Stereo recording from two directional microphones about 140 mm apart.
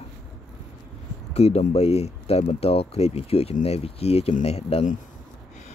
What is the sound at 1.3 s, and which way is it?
Speech, 45° left (ahead or behind).